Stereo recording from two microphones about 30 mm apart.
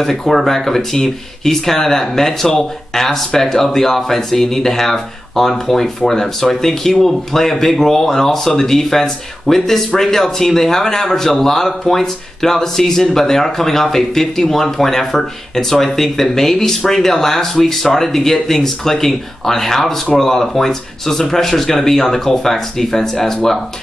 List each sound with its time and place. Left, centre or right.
0.0 s speech: centre